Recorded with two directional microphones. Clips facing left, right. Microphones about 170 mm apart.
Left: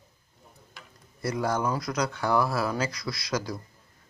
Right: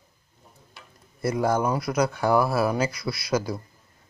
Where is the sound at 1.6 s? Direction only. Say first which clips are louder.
Right 4 dB; 25° right (ahead or behind).